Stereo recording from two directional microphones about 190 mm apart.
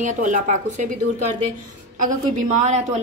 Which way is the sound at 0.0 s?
40° right (ahead or behind).